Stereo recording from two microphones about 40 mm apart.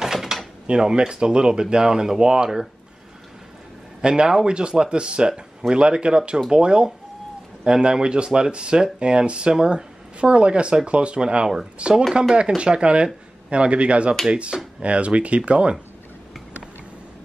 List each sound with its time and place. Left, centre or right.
0.0 s door: centre
0.7 s speech: right
4.0 s speech: centre